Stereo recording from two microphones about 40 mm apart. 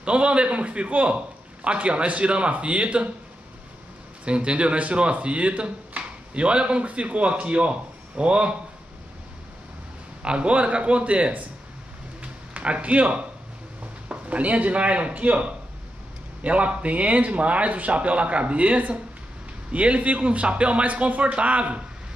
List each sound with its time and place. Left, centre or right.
0.0 s a man's voice: right
4.5 s a man's voice: right
10.2 s a man's voice: right
12.2 s a sound: right
14.0 s a man's voice: right